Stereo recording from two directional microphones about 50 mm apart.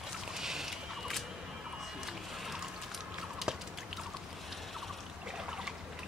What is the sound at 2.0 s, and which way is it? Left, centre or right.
Music, centre.